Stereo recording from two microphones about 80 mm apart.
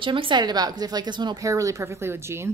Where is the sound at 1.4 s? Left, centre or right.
Right.